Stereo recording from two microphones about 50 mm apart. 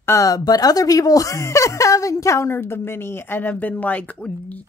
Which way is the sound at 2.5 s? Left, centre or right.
Left.